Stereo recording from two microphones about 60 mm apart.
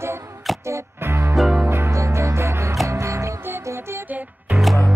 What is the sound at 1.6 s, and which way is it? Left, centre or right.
Music, right.